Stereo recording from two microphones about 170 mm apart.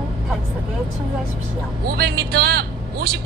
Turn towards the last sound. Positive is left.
turn(degrees=-65)  # may be behind; listen again after turning